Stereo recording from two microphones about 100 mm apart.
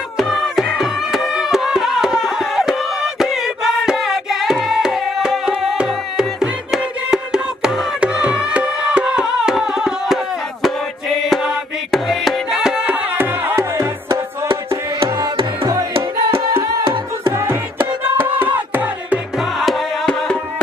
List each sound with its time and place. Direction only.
0.2 s music: centre (ahead or behind); by 14.5 s 25° right (ahead or behind)
15.9 s music: 70° right (ahead or behind)
17.3 s music: 30° right (ahead or behind)
19.3 s music: centre (ahead or behind)